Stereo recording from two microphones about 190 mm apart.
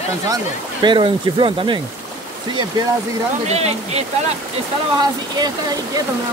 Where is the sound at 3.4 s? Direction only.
35° right (ahead or behind).